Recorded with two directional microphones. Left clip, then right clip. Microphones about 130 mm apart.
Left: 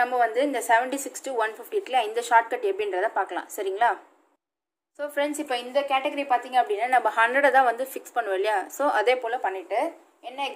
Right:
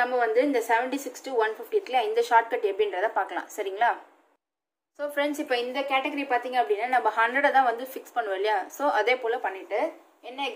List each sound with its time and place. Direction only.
0.0 s a woman's voice: 35° left (ahead or behind)
4.9 s a woman's voice: 15° left (ahead or behind)
9.7 s a woman's voice: 45° left (ahead or behind)